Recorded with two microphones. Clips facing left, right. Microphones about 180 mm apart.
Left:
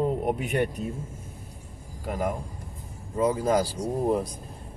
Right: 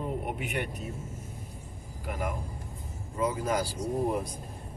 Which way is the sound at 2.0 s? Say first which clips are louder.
Left 5 dB; 35° left (ahead or behind).